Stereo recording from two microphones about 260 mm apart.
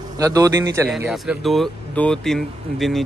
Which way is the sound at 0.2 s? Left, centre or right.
Centre.